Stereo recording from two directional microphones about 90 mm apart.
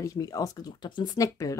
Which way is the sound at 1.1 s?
40° left (ahead or behind).